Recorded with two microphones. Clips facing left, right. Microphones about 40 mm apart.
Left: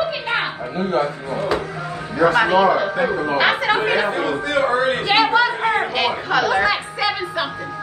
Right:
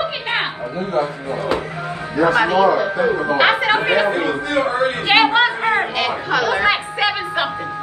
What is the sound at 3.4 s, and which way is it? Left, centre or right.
Speech, right.